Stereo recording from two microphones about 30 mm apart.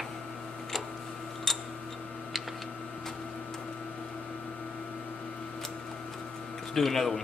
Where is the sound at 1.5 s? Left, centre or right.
Centre.